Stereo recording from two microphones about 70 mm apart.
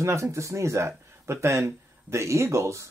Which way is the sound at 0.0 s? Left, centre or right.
Right.